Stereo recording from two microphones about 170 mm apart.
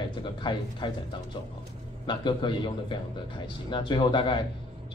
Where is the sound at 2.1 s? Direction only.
30° left (ahead or behind).